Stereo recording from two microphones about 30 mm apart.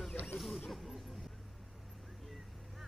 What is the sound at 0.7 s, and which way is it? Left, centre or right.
Music, centre.